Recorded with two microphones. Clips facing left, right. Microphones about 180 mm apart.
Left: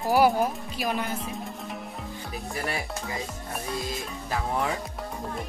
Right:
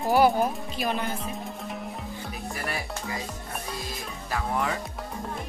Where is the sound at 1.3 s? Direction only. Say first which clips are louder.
Even; centre (ahead or behind).